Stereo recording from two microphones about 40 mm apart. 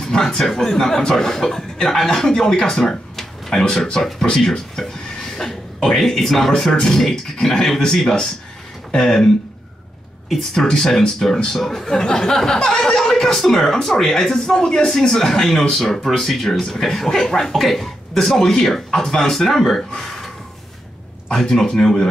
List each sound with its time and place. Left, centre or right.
0.0 s speech: centre
10.5 s speech: centre
20.0 s a sound: centre
21.3 s speech: centre